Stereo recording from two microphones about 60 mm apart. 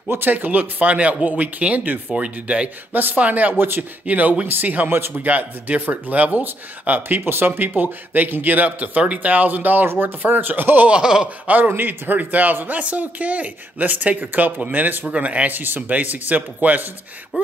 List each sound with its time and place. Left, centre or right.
0.1 s speech: right
2.9 s speech: right
3.5 s speech: right
4.0 s speech: right
4.9 s speech: right
5.2 s speech: right
10.9 s a sound: centre
11.4 s speech: right